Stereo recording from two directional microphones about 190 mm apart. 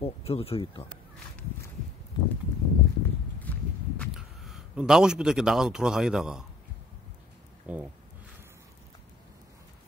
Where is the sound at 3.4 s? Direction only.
5° left (ahead or behind).